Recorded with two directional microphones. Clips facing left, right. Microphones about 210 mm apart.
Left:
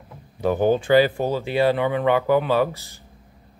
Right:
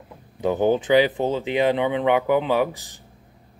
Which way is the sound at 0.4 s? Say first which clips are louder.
Even; 15° right (ahead or behind).